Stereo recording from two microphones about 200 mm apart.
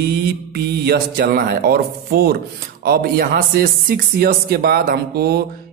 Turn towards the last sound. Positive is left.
turn(degrees=-50)  # may be behind; listen again after turning